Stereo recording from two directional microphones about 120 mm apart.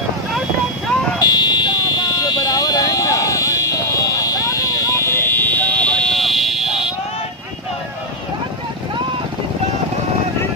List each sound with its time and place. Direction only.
1.2 s buzzer: 35° left (ahead or behind); by 6.8 s centre (ahead or behind)